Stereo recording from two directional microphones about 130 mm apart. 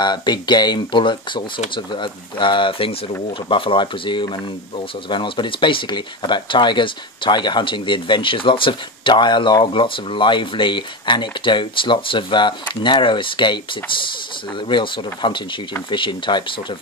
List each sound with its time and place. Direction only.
0.0 s speech: 35° left (ahead or behind)
14.7 s speech: 40° left (ahead or behind)